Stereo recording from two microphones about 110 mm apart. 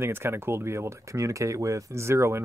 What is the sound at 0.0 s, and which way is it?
Speech, 20° right (ahead or behind).